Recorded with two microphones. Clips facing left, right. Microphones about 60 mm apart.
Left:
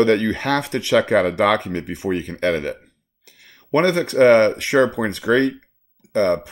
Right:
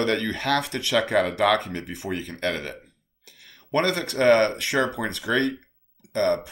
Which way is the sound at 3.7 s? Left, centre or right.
Left.